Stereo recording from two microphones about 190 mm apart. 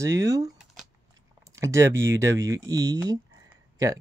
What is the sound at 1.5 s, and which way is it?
Speech, 15° right (ahead or behind).